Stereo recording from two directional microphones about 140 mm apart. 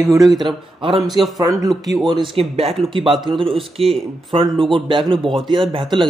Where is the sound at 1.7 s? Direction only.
Centre (ahead or behind).